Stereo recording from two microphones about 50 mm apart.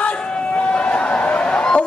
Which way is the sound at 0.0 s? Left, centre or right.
Left.